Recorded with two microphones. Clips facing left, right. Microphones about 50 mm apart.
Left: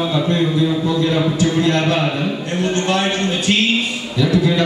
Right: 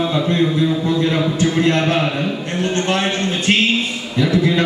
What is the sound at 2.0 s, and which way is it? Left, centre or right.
Speech, centre.